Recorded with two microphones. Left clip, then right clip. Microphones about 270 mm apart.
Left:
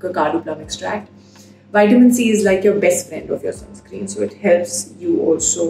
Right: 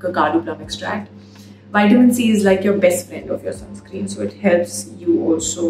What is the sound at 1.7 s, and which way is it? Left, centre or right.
A woman's voice, centre.